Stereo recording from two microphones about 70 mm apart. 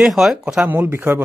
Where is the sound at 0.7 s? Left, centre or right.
Right.